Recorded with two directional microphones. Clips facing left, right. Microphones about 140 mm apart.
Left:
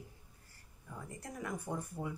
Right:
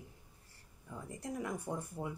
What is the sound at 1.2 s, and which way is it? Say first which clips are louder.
Speech: right 3 dB; 20° right (ahead or behind).